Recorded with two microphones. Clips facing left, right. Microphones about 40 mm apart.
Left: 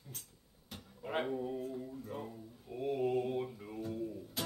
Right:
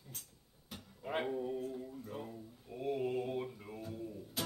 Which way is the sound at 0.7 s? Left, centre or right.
Centre.